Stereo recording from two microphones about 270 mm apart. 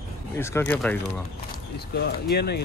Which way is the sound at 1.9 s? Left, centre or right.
Left.